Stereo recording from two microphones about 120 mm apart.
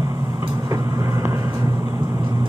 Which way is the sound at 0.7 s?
25° right (ahead or behind).